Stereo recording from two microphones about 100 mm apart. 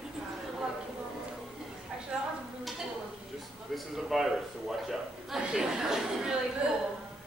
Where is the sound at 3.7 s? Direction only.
Centre (ahead or behind).